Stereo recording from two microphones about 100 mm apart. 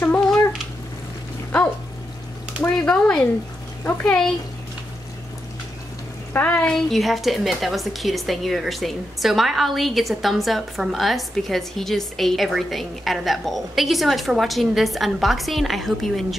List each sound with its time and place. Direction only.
0.0 s cat: 20° left (ahead or behind)
2.6 s speech: 10° left (ahead or behind)
6.3 s a woman's voice: 15° left (ahead or behind); by 16.3 s centre (ahead or behind)